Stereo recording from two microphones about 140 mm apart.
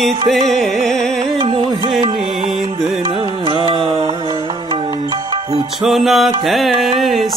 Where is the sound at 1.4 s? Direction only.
35° right (ahead or behind).